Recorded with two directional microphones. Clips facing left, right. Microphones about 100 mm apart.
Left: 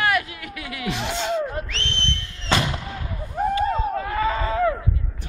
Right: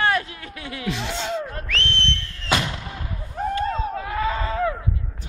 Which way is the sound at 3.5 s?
5° left (ahead or behind).